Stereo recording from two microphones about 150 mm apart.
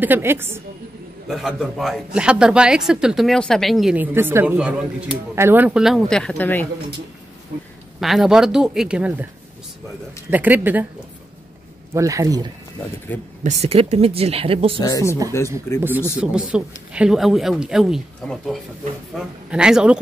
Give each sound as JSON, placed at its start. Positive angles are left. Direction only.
{"t": 0.0, "sound": "speech", "side_deg": -15}
{"t": 1.3, "sound": "speech", "side_deg": 0}
{"t": 3.9, "sound": "speech", "side_deg": -15}
{"t": 8.0, "sound": "speech", "side_deg": 0}
{"t": 10.3, "sound": "speech", "side_deg": -10}
{"t": 11.9, "sound": "speech", "side_deg": -20}
{"t": 13.4, "sound": "speech", "side_deg": -50}
{"t": 14.8, "sound": "speech", "side_deg": 25}
{"t": 16.2, "sound": "speech", "side_deg": -5}